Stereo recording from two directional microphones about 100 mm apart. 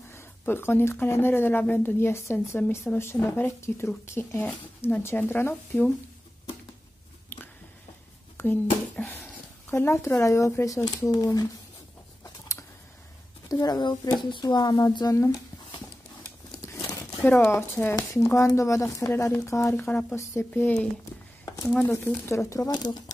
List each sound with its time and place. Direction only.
0.1 s speech: 25° left (ahead or behind)
8.4 s speech: 20° left (ahead or behind); by 11.4 s 35° left (ahead or behind)
12.2 s a sound: 30° left (ahead or behind)
13.5 s speech: 40° left (ahead or behind)
17.3 s speech: 20° left (ahead or behind); by 23.1 s 45° left (ahead or behind)